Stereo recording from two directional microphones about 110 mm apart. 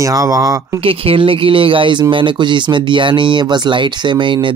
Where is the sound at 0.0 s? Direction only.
30° right (ahead or behind).